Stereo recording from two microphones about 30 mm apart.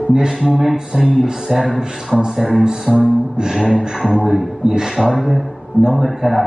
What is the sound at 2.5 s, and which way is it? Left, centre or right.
Speech, right.